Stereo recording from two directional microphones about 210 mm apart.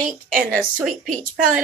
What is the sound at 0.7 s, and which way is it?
Speech, 5° right (ahead or behind).